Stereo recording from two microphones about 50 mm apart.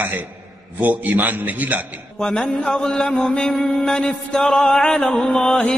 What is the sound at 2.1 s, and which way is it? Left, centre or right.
Mantra, centre.